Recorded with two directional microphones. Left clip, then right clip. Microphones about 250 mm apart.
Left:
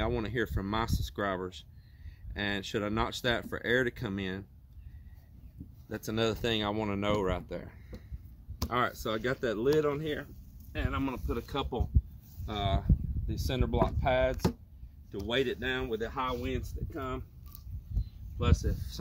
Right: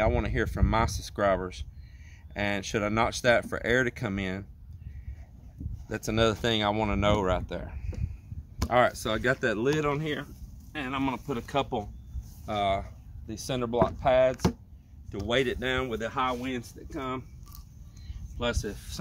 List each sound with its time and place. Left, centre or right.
0.0 s speech: centre
5.9 s speech: centre
18.4 s speech: right